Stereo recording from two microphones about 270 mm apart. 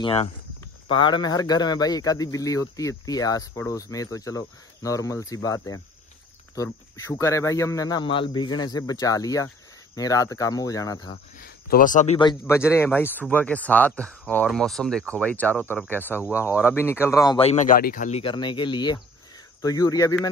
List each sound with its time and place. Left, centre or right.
0.0 s a man's voice: left
11.4 s a man's voice: left; by 20.2 s centre